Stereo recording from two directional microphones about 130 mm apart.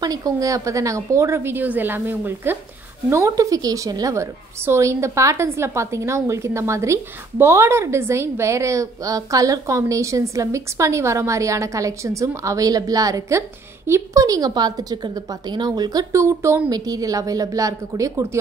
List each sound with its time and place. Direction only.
0.0 s a woman's voice: 25° right (ahead or behind)